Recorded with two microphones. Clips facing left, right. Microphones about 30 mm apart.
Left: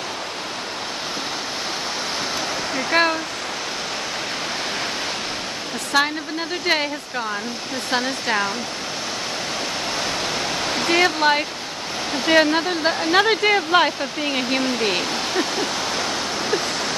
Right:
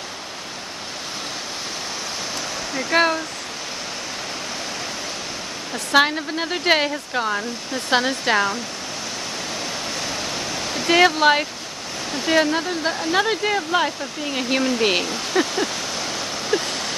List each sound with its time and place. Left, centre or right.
2.9 s speech: centre
5.9 s speech: centre
9.9 s waves: left
10.4 s waterfall: left
10.9 s speech: centre
12.1 s speech: centre
14.8 s speech: centre
15.3 s a sound: centre
16.0 s a sound: left